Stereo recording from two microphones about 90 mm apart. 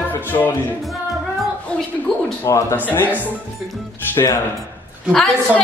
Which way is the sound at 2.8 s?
20° left (ahead or behind).